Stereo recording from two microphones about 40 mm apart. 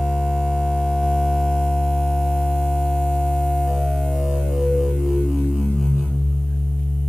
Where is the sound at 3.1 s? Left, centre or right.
Centre.